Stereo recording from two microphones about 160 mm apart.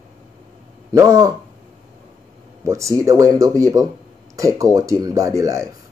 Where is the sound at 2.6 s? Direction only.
20° right (ahead or behind).